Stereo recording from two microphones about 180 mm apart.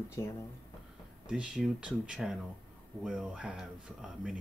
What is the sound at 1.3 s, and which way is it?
Speech, 5° right (ahead or behind).